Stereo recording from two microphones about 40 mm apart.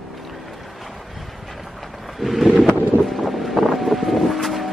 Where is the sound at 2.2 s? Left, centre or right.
Centre.